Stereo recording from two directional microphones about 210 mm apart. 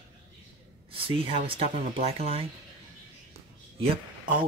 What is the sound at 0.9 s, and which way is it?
Speech, 25° right (ahead or behind).